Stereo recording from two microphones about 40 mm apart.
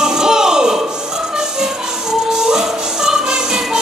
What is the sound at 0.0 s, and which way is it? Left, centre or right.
Music, centre.